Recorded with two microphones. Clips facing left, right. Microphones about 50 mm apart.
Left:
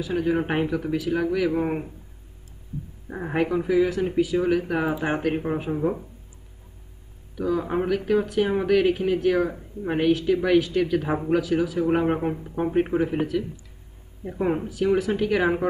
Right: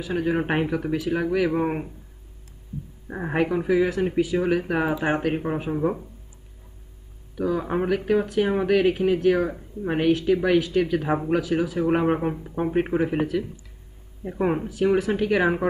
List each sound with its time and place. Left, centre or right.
0.0 s speech: centre
3.1 s speech: centre
5.0 s speech: centre
7.3 s speech: centre
12.7 s speech: centre
14.2 s speech: centre